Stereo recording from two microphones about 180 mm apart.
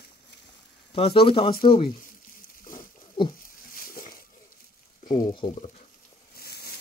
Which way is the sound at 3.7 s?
50° left (ahead or behind).